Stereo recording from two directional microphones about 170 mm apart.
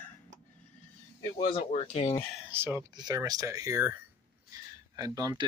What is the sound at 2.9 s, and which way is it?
Speech, 25° right (ahead or behind).